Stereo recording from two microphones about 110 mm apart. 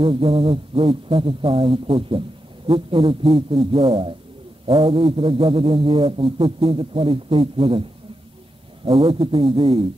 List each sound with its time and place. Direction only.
0.0 s speech: 55° right (ahead or behind)
8.8 s a man's voice: 55° right (ahead or behind)